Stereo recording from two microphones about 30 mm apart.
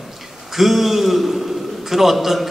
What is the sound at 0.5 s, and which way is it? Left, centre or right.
A man's voice, centre.